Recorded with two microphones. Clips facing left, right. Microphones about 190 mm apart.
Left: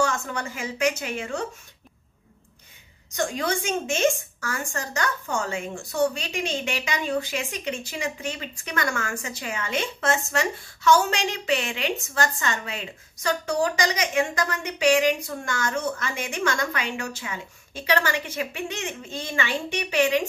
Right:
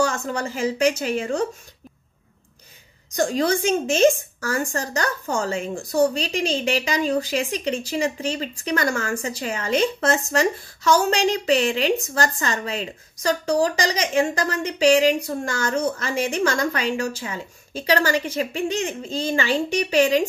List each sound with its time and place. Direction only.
0.0 s speech: 35° right (ahead or behind)
3.2 s speech: 35° right (ahead or behind)